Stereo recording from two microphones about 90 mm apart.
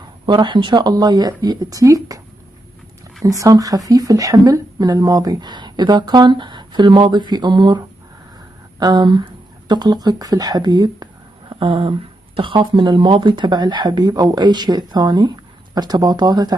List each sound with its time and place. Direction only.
0.3 s a woman's voice: 60° right (ahead or behind); by 2.2 s 40° right (ahead or behind)
3.3 s a woman's voice: 40° right (ahead or behind)
11.6 s speech: 85° right
12.4 s a woman's voice: 65° right (ahead or behind); by 16.5 s 50° right (ahead or behind)